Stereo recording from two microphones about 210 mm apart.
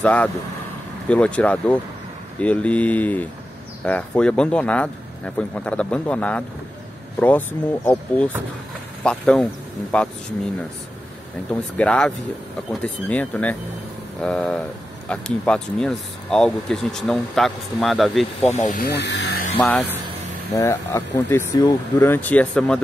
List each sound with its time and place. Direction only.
0.0 s speech: 5° left (ahead or behind)
11.7 s speech: 5° left (ahead or behind)
18.7 s speech: 45° left (ahead or behind)
19.5 s speech: centre (ahead or behind)
20.5 s speech: 15° left (ahead or behind)